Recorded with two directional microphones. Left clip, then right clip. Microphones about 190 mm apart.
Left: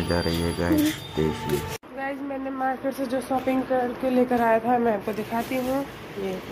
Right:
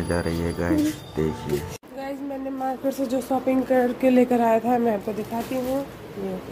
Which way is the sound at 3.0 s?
40° right (ahead or behind).